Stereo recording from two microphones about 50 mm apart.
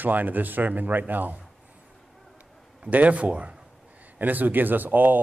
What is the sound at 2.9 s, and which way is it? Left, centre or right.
Speech, right.